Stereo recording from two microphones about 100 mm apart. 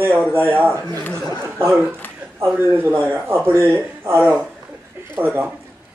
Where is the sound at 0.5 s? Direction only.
20° right (ahead or behind).